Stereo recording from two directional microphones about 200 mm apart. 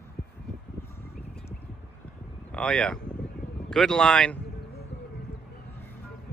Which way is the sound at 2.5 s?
5° left (ahead or behind).